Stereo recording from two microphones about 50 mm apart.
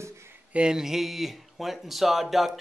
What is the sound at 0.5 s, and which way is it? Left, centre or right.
A man's voice, centre.